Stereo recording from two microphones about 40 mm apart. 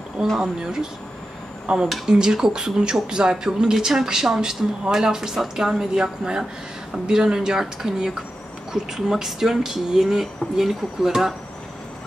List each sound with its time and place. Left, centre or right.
0.4 s speech: centre